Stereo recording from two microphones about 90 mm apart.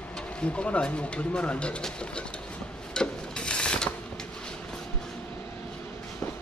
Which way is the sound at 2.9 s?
10° left (ahead or behind).